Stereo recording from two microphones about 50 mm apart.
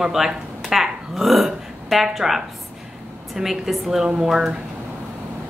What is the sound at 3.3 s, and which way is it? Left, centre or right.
A woman's voice, centre.